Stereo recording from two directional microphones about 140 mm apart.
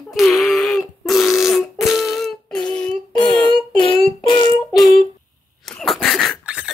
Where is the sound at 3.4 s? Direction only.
35° left (ahead or behind).